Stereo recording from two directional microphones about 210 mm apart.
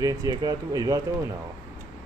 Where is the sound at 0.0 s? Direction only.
15° right (ahead or behind).